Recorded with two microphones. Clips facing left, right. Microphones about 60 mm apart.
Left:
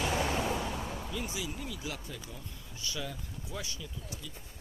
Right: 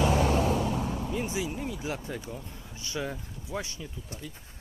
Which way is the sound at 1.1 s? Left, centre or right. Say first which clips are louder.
Right 6 dB; right.